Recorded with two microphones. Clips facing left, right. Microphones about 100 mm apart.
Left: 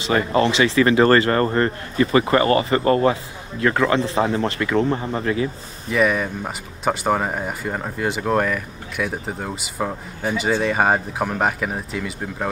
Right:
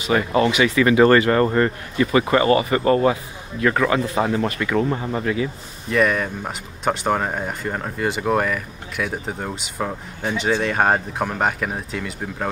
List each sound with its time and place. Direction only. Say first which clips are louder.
0.0 s speech: even; 35° left (ahead or behind)
1.4 s speech: right 1 dB; 45° left (ahead or behind)
5.9 s speech: even; centre (ahead or behind)